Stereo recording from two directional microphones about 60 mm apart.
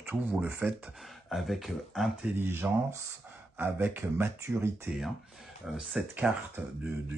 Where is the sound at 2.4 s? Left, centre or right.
Right.